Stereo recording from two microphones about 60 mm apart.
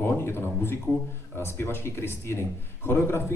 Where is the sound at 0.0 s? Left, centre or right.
Left.